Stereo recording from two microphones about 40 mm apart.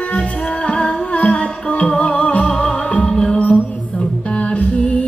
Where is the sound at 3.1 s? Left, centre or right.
Centre.